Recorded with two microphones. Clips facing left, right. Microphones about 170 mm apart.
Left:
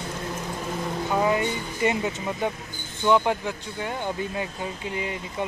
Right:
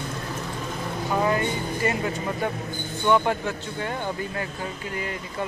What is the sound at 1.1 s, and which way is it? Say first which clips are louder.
Music: even; 15° left (ahead or behind).